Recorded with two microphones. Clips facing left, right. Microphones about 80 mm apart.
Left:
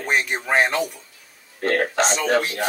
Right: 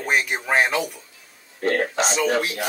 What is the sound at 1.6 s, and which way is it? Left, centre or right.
Speech, left.